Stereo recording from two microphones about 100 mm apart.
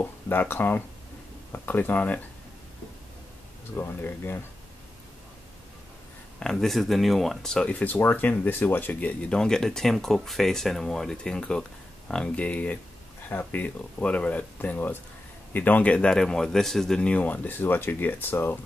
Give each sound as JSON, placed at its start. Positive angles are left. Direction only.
{"t": 0.0, "sound": "speech", "side_deg": 20}
{"t": 3.7, "sound": "speech", "side_deg": 25}
{"t": 6.4, "sound": "speech", "side_deg": 5}